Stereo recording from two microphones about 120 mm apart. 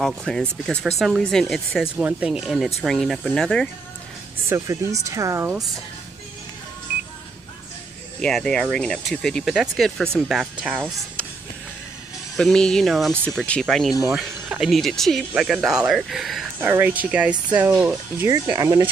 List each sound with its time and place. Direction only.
0.0 s speech: 5° left (ahead or behind)
2.0 s speech: 15° right (ahead or behind); by 3.6 s 5° left (ahead or behind)
4.5 s speech: 25° right (ahead or behind)
8.2 s speech: 5° left (ahead or behind)
10.8 s speech: 5° left (ahead or behind)
12.4 s speech: 5° left (ahead or behind)
16.5 s speech: 15° right (ahead or behind)
18.3 s speech: 30° right (ahead or behind)